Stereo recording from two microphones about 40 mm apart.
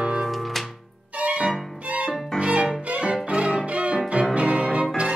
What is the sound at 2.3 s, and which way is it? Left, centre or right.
Violin, right.